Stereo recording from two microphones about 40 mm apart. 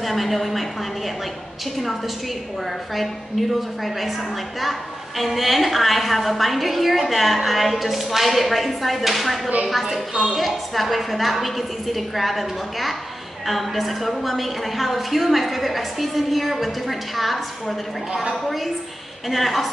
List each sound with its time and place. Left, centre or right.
0.0 s a woman's voice: centre
2.9 s a woman's voice: centre
19.2 s a woman's voice: centre